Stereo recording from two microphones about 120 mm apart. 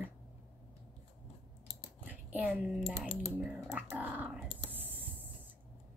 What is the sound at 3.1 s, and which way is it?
Speech, 60° left (ahead or behind).